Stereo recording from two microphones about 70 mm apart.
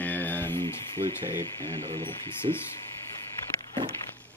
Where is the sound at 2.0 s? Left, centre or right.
Left.